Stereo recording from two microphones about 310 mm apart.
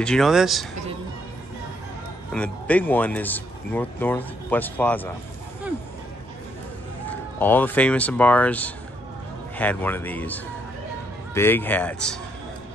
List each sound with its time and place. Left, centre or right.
0.0 s speech: centre
2.3 s speech: centre
7.1 s speech: centre